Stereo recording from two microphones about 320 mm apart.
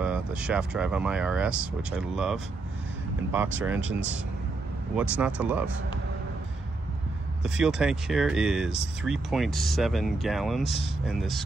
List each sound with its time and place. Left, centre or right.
0.0 s speech: centre
3.8 s speech: right
4.9 s speech: centre
7.4 s speech: centre